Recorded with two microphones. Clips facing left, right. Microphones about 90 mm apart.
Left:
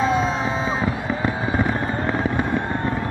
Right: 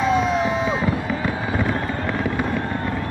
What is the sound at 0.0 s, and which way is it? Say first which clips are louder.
Fireworks: right 1 dB; 35° left (ahead or behind).